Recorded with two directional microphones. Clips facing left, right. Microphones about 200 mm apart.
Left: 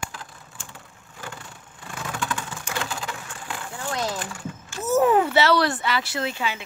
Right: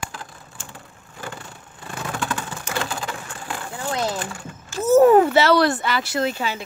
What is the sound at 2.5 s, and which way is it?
Typing, 40° right (ahead or behind).